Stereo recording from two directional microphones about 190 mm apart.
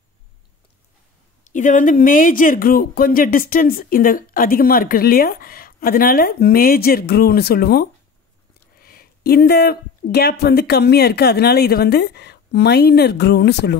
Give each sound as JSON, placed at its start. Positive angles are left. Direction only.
{"t": 1.4, "sound": "speech", "side_deg": 40}